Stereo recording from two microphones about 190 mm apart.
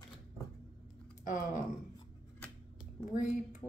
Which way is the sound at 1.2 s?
45° left (ahead or behind).